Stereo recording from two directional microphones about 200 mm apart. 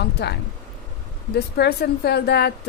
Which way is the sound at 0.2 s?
55° left (ahead or behind).